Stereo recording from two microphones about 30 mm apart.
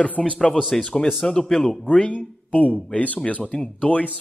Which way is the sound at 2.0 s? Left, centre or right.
Left.